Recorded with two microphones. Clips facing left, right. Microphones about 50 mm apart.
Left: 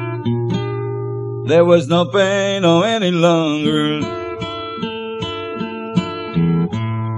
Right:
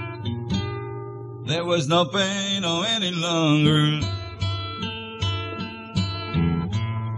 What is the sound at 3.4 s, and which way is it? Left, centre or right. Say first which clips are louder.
Mantra: left 3 dB; centre.